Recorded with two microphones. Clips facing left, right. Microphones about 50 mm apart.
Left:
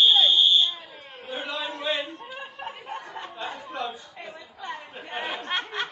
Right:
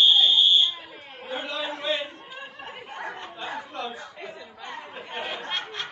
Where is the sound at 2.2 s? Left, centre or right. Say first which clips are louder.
Left 3 dB; centre.